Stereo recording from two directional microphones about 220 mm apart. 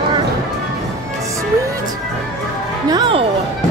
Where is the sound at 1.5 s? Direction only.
15° right (ahead or behind).